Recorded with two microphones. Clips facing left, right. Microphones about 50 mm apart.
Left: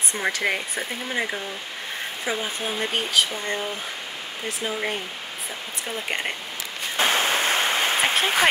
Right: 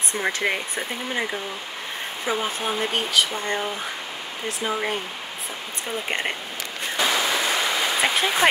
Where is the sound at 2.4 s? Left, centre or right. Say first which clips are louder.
Right 3 dB; right.